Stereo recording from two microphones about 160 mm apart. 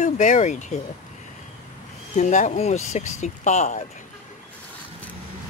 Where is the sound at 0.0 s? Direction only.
50° left (ahead or behind).